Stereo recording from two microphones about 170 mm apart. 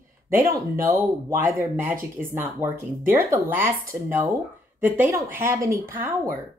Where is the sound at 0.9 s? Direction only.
15° right (ahead or behind).